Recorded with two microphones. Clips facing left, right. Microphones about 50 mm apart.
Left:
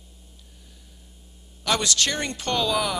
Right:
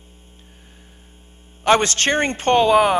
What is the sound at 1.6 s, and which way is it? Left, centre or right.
Speech, right.